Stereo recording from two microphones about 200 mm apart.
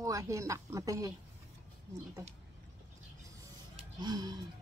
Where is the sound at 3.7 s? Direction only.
20° right (ahead or behind).